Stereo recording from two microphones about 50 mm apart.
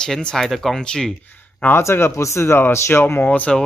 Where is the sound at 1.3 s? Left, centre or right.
Left.